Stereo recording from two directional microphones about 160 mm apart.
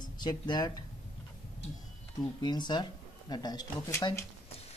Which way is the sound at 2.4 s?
25° left (ahead or behind).